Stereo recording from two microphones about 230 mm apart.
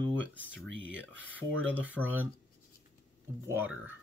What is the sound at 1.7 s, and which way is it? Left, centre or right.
Speech, centre.